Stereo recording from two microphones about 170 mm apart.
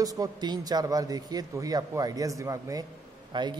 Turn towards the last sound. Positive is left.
turn(degrees=-25)  # may be behind; listen again after turning